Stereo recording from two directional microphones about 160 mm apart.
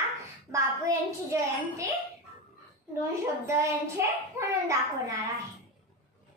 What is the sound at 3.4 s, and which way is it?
Child singing, 15° right (ahead or behind).